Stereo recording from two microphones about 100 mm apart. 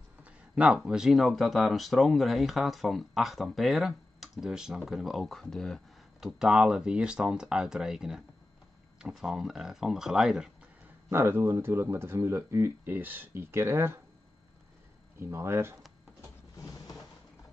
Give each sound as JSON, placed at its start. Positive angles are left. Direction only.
{"t": 0.2, "sound": "a sound", "side_deg": -10}
{"t": 0.8, "sound": "speech", "side_deg": -5}
{"t": 6.2, "sound": "speech", "side_deg": -5}
{"t": 11.1, "sound": "speech", "side_deg": -25}
{"t": 15.1, "sound": "speech", "side_deg": -25}